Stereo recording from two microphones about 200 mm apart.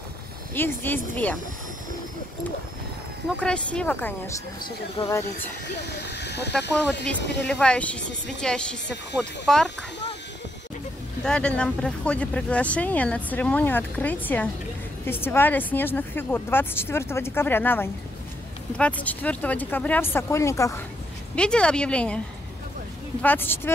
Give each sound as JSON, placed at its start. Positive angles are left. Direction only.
{"t": 0.6, "sound": "speech", "side_deg": 10}
{"t": 3.3, "sound": "a woman's voice", "side_deg": 5}
{"t": 4.6, "sound": "speech", "side_deg": 20}
{"t": 5.8, "sound": "speech", "side_deg": 55}
{"t": 7.4, "sound": "a woman's voice", "side_deg": 5}
{"t": 11.2, "sound": "a woman's voice", "side_deg": 5}
{"t": 23.2, "sound": "speech", "side_deg": 10}